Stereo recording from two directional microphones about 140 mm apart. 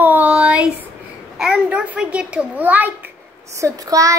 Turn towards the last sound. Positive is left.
turn(degrees=-25)  # may be behind; listen again after turning